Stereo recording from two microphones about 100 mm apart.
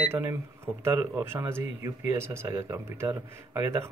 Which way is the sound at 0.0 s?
25° right (ahead or behind).